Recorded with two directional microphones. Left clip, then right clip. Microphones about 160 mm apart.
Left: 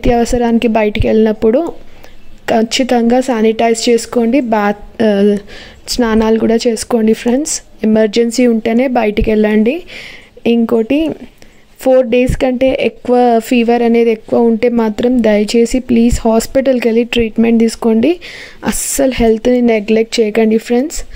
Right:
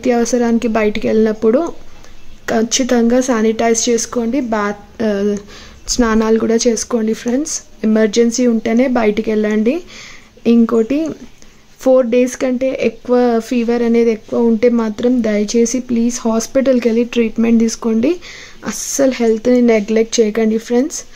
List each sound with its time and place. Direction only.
0.0 s speech: 25° left (ahead or behind)